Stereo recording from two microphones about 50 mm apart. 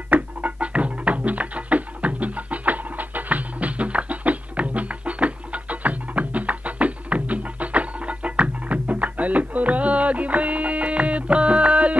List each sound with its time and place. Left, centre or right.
0.1 s music: right